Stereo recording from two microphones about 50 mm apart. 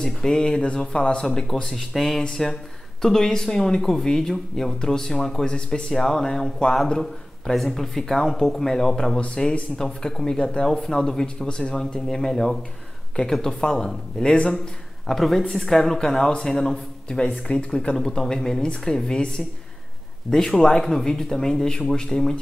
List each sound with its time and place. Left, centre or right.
0.0 s speech: centre
1.7 s speech: centre
17.5 s speech: left
17.9 s speech: centre